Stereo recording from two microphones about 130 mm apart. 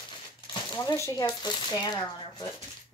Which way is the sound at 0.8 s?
25° left (ahead or behind).